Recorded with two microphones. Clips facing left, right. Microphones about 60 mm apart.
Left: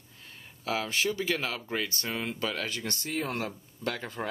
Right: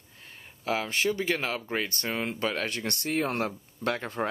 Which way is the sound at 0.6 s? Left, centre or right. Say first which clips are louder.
Right 2 dB; right.